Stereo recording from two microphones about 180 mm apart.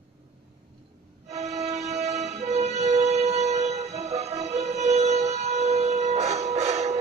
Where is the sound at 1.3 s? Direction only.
40° right (ahead or behind).